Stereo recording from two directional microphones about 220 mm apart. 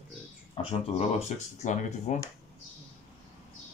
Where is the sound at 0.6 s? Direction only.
25° left (ahead or behind).